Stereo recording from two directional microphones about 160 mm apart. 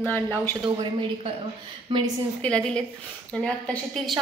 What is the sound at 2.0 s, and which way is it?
A woman's voice, 5° left (ahead or behind).